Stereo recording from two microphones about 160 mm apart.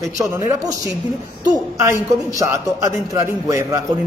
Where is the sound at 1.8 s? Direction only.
20° right (ahead or behind).